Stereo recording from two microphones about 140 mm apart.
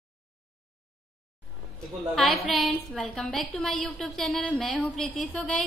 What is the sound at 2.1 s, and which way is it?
A woman's voice, centre (ahead or behind).